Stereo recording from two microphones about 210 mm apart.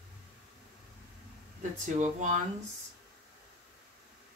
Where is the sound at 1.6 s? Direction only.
35° right (ahead or behind).